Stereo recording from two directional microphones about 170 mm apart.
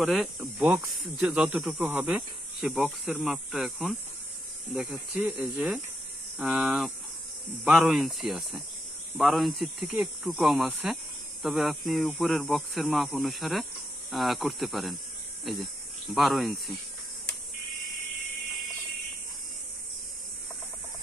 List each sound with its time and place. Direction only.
0.0 s speech: centre (ahead or behind)
0.4 s speech: 10° right (ahead or behind)